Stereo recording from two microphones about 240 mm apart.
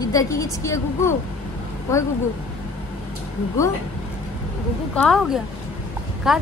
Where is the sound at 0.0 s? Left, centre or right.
Centre.